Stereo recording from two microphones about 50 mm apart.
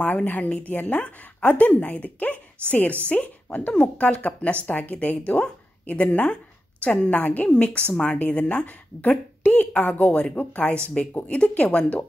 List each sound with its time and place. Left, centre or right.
0.0 s a woman's voice: left